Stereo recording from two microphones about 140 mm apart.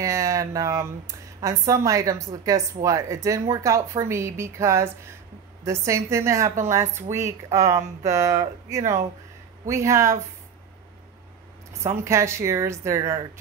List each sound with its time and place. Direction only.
0.0 s speech: 20° right (ahead or behind)
12.0 s speech: 20° right (ahead or behind)